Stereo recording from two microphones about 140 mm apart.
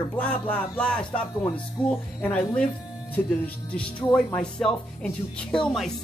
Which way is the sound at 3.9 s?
5° left (ahead or behind).